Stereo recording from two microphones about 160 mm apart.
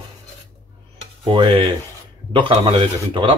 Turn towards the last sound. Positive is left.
turn(degrees=-35)  # may be behind; listen again after turning